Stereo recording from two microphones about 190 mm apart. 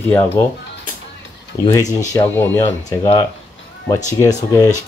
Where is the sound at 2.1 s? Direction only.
15° left (ahead or behind).